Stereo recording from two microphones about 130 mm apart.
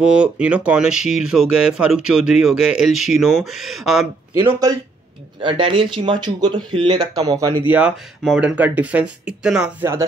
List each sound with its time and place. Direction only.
0.0 s speech: 10° right (ahead or behind)
4.4 s speech: 20° right (ahead or behind)
5.4 s speech: 40° right (ahead or behind)
7.6 s speech: 15° right (ahead or behind)